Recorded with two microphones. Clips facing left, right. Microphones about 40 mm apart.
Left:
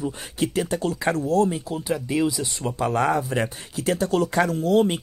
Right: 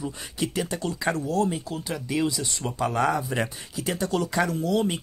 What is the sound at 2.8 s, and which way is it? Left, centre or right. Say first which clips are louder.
Speech: left 2 dB; left.